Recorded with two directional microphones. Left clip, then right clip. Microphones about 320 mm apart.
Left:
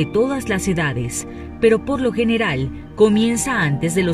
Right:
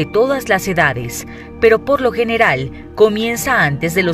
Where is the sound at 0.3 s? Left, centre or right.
Centre.